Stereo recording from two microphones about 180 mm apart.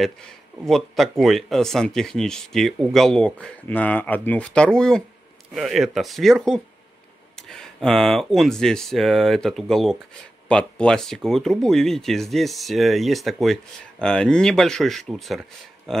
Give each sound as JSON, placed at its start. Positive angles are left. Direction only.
{"t": 0.0, "sound": "speech", "side_deg": 0}